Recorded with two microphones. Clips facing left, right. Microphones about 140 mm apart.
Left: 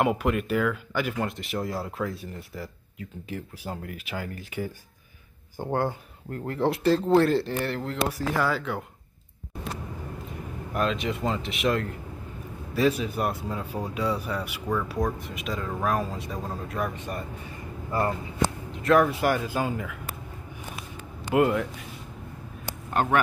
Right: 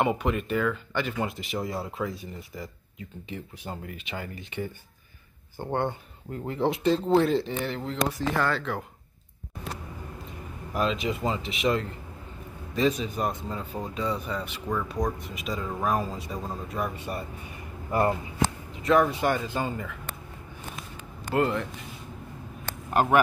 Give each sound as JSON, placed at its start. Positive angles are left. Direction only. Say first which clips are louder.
{"t": 0.0, "sound": "speech", "louder": "left 1 dB", "side_deg": 0}
{"t": 10.7, "sound": "speech", "louder": "even", "side_deg": 0}
{"t": 18.8, "sound": "speech", "louder": "left 1 dB", "side_deg": 0}
{"t": 21.3, "sound": "speech", "louder": "left 3 dB", "side_deg": 10}